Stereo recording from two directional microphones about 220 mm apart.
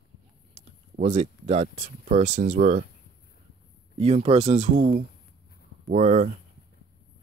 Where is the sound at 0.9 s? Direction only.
30° right (ahead or behind).